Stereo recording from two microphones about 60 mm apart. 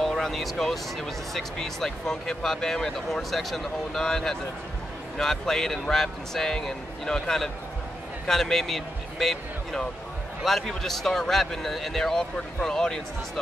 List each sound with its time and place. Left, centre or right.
0.0 s speech: centre